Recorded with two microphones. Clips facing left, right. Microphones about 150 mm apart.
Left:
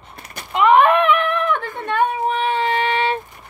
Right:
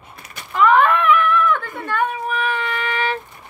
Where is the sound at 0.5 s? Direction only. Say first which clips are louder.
Left 2 dB; 20° left (ahead or behind).